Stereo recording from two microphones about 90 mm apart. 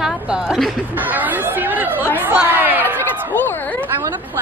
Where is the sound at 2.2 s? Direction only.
20° right (ahead or behind).